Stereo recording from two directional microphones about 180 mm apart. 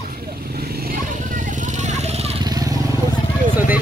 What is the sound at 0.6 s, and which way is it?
Vehicle, 55° right (ahead or behind).